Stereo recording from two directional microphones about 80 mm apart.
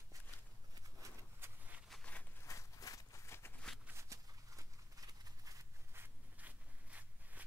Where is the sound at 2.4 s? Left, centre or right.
Left.